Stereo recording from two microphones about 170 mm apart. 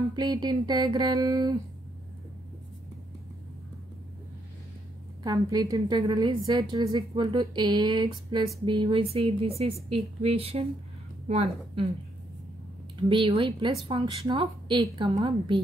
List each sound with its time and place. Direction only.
0.1 s a woman's voice: 25° right (ahead or behind)
5.2 s a woman's voice: 20° right (ahead or behind); by 11.9 s 40° right (ahead or behind)
13.1 s a woman's voice: 30° right (ahead or behind)